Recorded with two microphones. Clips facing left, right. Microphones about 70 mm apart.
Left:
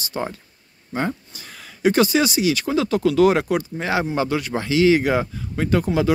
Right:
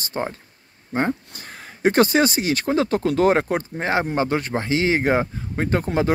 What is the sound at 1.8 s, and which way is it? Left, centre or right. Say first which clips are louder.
Speech: even; right.